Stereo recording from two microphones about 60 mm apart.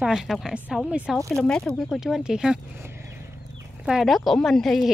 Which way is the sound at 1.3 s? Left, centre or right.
Centre.